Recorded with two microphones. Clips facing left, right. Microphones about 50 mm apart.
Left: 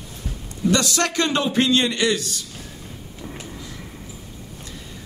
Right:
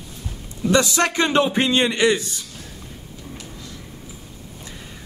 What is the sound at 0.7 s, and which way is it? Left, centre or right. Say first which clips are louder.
A man's voice: right 3 dB; centre.